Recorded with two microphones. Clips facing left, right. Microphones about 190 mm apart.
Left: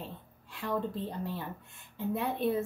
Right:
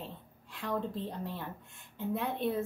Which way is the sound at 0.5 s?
Centre (ahead or behind).